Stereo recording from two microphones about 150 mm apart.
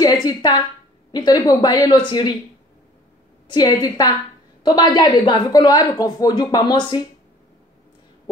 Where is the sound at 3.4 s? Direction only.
25° left (ahead or behind).